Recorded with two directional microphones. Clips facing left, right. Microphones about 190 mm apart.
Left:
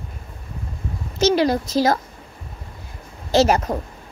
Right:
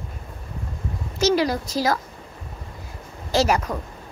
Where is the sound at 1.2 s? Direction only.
25° left (ahead or behind).